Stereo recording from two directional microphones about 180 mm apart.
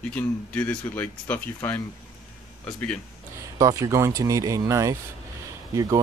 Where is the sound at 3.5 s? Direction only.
20° right (ahead or behind).